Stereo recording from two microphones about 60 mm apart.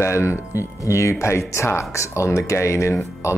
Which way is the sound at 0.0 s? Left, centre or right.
Left.